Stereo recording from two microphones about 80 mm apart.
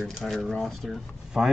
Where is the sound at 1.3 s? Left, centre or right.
Centre.